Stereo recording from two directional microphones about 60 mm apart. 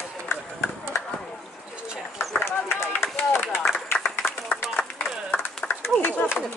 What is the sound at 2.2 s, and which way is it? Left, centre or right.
Run, left.